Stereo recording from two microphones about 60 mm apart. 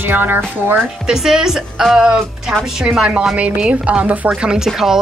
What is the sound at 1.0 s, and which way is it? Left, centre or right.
A woman's voice, centre.